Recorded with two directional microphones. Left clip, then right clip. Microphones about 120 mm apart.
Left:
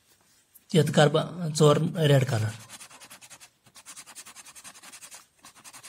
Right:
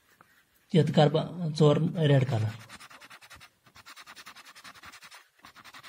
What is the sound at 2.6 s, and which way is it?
Scratch, 25° left (ahead or behind).